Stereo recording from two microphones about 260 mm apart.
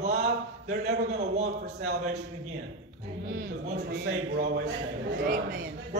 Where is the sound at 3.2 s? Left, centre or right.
Right.